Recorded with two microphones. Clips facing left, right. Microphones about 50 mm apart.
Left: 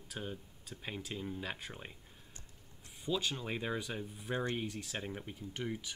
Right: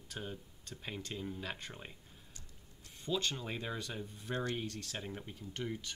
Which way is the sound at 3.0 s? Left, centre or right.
Centre.